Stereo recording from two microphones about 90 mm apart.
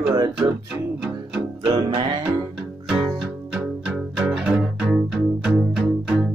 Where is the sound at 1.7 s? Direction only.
60° right (ahead or behind).